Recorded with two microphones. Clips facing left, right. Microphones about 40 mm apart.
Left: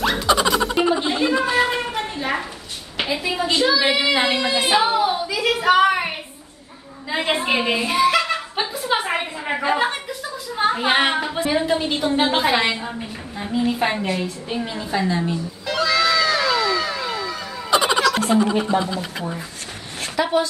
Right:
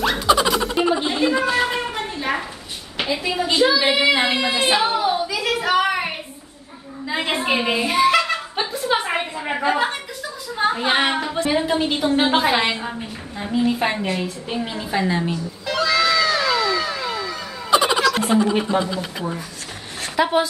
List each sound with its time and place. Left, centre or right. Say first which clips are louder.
0.0 s a sound: right 1 dB; centre
3.0 s a woman's voice: even; centre
7.1 s a sound: left 1 dB; centre
10.5 s a woman's voice: left 1 dB; centre
15.6 s cat: even; centre
18.5 s a woman's voice: even; centre
20.2 s a woman's voice: right 2 dB; centre